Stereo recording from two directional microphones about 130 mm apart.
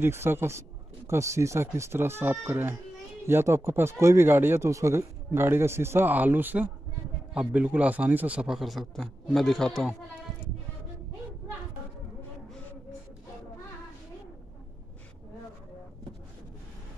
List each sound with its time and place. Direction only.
0.0 s a man's voice: 20° right (ahead or behind); by 9.8 s 5° left (ahead or behind)